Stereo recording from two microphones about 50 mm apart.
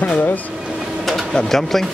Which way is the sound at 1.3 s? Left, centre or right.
Centre.